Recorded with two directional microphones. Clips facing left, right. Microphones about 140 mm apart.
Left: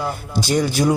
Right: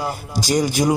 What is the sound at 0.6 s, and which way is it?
Speech, 15° right (ahead or behind).